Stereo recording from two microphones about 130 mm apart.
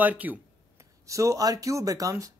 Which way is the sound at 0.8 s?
25° right (ahead or behind).